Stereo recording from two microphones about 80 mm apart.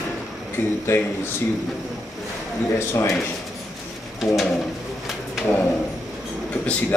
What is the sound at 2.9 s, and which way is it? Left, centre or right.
Speech, left.